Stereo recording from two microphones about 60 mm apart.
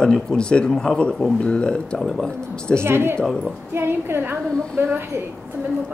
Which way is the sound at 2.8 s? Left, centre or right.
Right.